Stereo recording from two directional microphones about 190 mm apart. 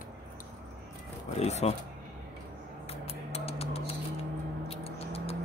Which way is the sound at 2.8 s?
30° left (ahead or behind).